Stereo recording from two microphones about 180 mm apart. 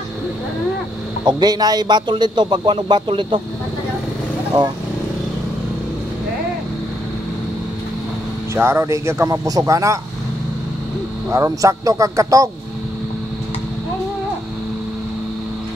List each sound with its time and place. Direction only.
1.2 s a man's voice: 20° right (ahead or behind)
4.5 s a man's voice: 25° right (ahead or behind)
8.5 s speech: 15° right (ahead or behind)
11.2 s a man's voice: 20° right (ahead or behind)